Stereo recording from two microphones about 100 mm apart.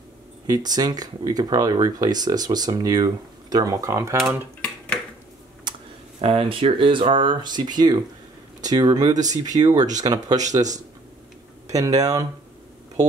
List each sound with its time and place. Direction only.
0.5 s speech: 40° right (ahead or behind)
5.7 s computer keyboard: 50° right (ahead or behind)
6.2 s speech: 75° right (ahead or behind); by 10.6 s 40° right (ahead or behind)
11.6 s speech: 35° right (ahead or behind)